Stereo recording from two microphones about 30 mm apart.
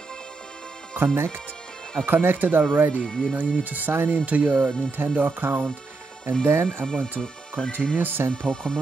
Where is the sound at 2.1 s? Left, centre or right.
Right.